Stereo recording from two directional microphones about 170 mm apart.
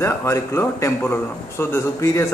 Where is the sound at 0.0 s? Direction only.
15° left (ahead or behind).